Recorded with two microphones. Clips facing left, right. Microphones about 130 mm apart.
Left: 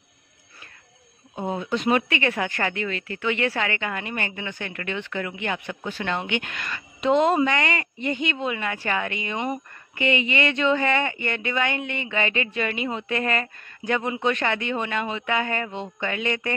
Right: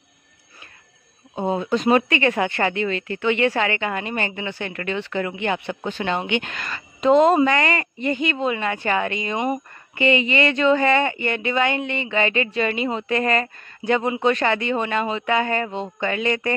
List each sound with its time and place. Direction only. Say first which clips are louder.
1.3 s speech: right 5 dB; 30° right (ahead or behind)
6.5 s speech: right 2 dB; 35° right (ahead or behind)
8.5 s speech: right 4 dB; 30° right (ahead or behind)
11.1 s speech: right 4 dB; 20° right (ahead or behind); by 16.5 s 40° right (ahead or behind)